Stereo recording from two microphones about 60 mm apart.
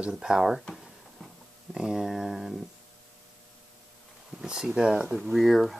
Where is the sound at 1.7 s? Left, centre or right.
Centre.